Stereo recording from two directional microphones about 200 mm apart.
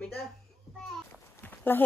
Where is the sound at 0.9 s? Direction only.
10° left (ahead or behind).